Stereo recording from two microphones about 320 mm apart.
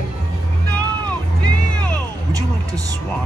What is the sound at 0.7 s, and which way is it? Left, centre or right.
Vehicle, centre.